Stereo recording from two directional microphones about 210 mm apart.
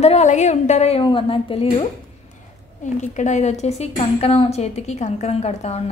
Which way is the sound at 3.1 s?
35° left (ahead or behind).